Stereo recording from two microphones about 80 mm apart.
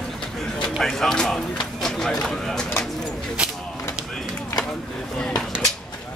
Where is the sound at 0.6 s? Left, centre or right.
Centre.